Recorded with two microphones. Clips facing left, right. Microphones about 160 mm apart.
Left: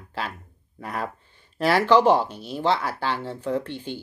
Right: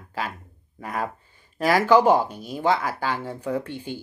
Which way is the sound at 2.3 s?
45° right (ahead or behind).